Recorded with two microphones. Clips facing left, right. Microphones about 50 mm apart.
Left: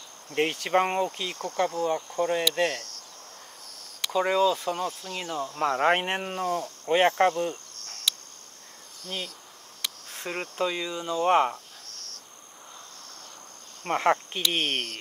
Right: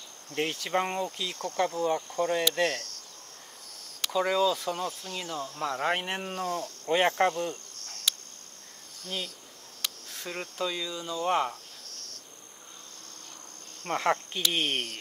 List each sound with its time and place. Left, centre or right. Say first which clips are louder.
0.3 s speech: left 5 dB; left
1.6 s speech: left 1 dB; centre
4.1 s speech: left 3 dB; centre
7.3 s cricket: left 3 dB; left
10.0 s speech: left 4 dB; left
13.8 s speech: left 4 dB; centre
14.6 s speech: left 1 dB; centre